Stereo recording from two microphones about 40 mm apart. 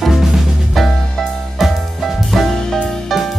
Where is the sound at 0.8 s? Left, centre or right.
Centre.